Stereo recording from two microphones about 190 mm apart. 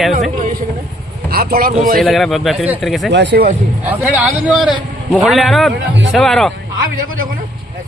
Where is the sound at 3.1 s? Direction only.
65° right (ahead or behind).